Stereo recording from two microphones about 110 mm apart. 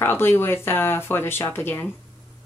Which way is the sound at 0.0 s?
20° left (ahead or behind).